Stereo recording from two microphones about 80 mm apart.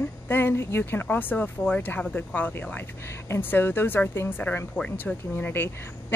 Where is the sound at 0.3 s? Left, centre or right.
Left.